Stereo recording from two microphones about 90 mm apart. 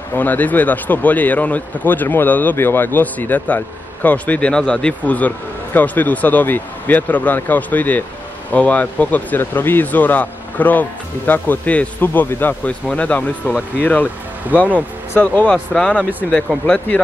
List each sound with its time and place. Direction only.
0.1 s speech: 20° left (ahead or behind)
14.5 s speech: 20° right (ahead or behind)
15.1 s speech: 15° left (ahead or behind)
16.0 s speech: 20° right (ahead or behind)
16.6 s speech: 10° left (ahead or behind)